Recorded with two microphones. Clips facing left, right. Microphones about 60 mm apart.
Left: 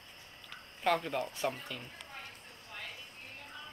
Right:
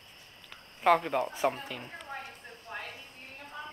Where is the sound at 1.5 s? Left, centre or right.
Right.